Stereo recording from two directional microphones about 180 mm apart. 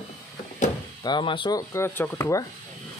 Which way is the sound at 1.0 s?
25° left (ahead or behind).